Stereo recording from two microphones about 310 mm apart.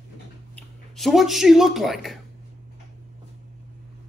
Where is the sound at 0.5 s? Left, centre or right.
Centre.